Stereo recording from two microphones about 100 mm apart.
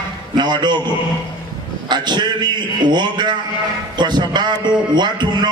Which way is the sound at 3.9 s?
45° right (ahead or behind).